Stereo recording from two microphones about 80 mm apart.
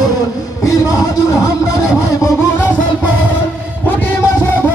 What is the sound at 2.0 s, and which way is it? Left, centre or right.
Vehicle, left.